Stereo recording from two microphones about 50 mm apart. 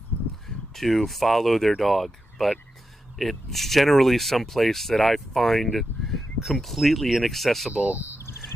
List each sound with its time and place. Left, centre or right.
0.7 s speech: centre
7.8 s speech: right